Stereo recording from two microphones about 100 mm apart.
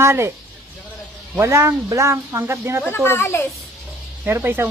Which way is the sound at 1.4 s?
30° right (ahead or behind).